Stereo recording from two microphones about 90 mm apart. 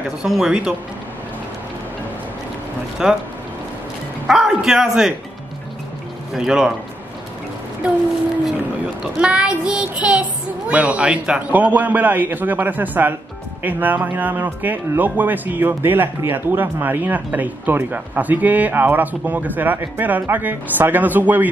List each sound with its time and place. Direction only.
0.2 s a man's voice: 5° right (ahead or behind)
3.0 s a man's voice: 5° right (ahead or behind)
4.3 s a man's voice: 5° right (ahead or behind)
6.3 s child singing: 5° right (ahead or behind)
9.2 s child singing: 10° right (ahead or behind)
10.7 s speech: 15° right (ahead or behind)